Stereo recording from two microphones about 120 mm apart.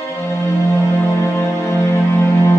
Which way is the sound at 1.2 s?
25° left (ahead or behind).